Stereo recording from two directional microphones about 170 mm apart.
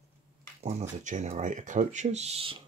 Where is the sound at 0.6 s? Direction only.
45° right (ahead or behind).